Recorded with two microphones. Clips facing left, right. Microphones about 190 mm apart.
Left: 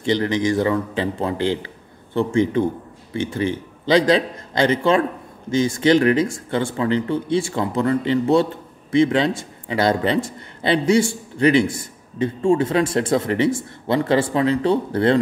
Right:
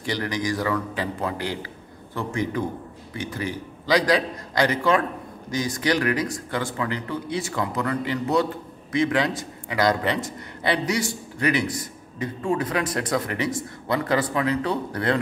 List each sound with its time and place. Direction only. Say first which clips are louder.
0.0 s a man's voice: left 7 dB; 25° left (ahead or behind)